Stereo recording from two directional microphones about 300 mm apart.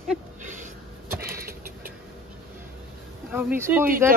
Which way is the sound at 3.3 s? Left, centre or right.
Centre.